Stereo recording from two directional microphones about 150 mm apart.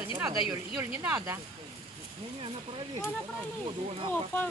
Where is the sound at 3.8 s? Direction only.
40° right (ahead or behind).